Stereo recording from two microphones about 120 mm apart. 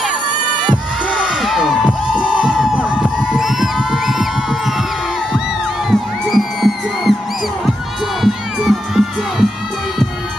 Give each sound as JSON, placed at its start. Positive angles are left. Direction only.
{"t": 1.4, "sound": "crowd", "side_deg": 0}
{"t": 5.9, "sound": "music", "side_deg": 0}
{"t": 8.2, "sound": "crowd", "side_deg": 0}